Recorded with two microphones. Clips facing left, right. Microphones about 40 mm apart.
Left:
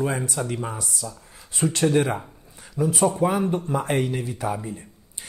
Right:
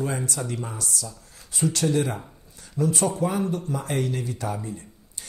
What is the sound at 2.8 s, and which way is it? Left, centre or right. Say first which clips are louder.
A man's voice: left 3 dB; centre.